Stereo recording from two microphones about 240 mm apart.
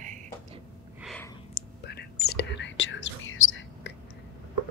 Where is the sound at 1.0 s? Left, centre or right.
Centre.